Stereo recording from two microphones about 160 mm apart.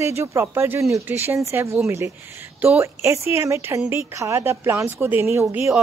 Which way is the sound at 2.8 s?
20° right (ahead or behind).